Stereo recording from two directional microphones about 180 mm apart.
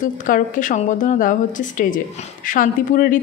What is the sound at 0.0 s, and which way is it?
Speech, 45° left (ahead or behind).